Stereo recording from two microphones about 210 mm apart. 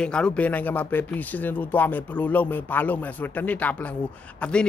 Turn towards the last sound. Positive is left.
turn(degrees=5)  # may be behind; listen again after turning